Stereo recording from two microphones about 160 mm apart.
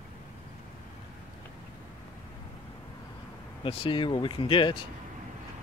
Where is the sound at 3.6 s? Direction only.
35° left (ahead or behind).